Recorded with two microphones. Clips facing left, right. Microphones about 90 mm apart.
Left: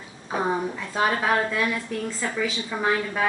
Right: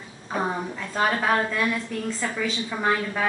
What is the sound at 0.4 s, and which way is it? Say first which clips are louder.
A woman's voice: left 2 dB; 5° left (ahead or behind).